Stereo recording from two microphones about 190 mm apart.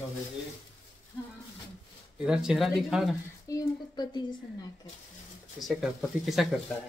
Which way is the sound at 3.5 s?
20° left (ahead or behind).